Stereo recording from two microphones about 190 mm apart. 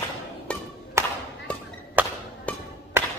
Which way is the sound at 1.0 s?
15° right (ahead or behind).